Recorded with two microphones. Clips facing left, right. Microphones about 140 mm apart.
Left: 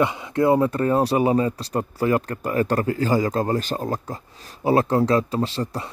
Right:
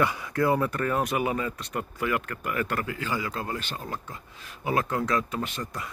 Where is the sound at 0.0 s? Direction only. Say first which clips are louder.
Left 5 dB; 20° left (ahead or behind).